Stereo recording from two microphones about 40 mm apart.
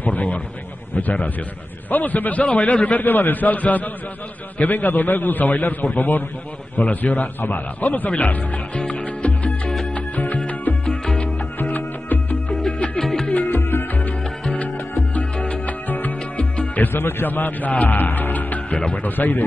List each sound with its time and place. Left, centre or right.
0.0 s a man's voice: left
3.1 s a man's voice: left
9.9 s music: left
11.7 s music: left
12.6 s music: left
13.0 s music: centre
13.3 s music: left
13.6 s music: left
14.5 s music: left
16.9 s speech: left
19.0 s a man's voice: left